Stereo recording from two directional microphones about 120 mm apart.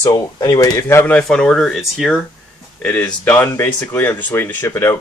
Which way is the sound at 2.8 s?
10° left (ahead or behind).